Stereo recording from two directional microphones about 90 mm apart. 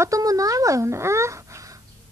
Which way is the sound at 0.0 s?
40° right (ahead or behind).